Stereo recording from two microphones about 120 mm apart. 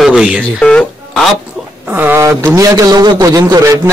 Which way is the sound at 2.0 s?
20° right (ahead or behind).